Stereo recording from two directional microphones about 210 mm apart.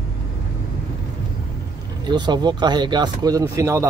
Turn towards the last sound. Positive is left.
turn(degrees=-15)  # may be behind; listen again after turning